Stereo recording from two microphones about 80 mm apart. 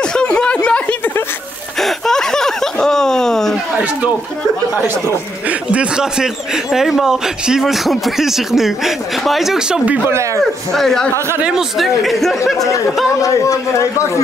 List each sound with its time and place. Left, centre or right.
0.0 s a sound: centre
1.8 s a sound: centre
5.5 s speech: centre
10.0 s speech: right
10.4 s speech: centre
11.1 s speech: right
11.4 s speech: centre
13.2 s speech: left